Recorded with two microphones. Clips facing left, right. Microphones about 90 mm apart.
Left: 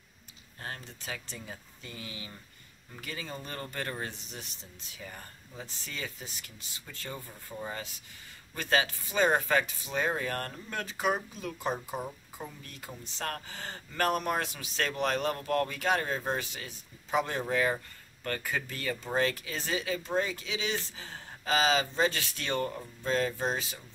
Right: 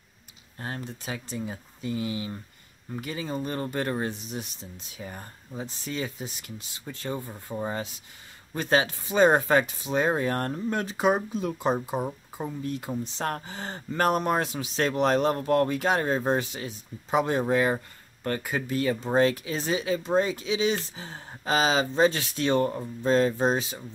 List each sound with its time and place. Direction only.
0.6 s speech: 25° right (ahead or behind)
8.5 s speech: 25° right (ahead or behind)